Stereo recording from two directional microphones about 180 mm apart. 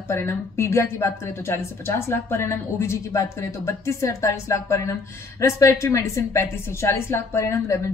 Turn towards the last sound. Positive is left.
turn(degrees=15)  # may be behind; listen again after turning